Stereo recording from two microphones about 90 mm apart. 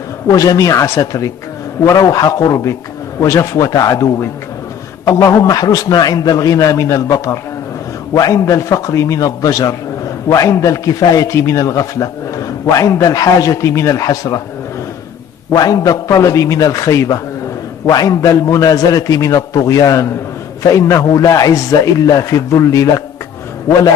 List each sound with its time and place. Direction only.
0.3 s a man's voice: 40° left (ahead or behind)
15.5 s a man's voice: 40° left (ahead or behind)